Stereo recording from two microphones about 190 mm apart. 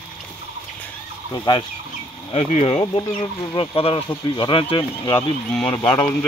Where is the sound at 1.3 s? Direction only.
20° left (ahead or behind).